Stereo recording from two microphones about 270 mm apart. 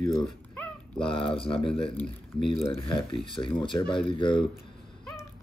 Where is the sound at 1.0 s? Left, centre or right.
Centre.